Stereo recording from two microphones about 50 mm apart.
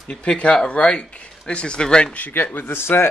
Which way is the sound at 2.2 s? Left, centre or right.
Left.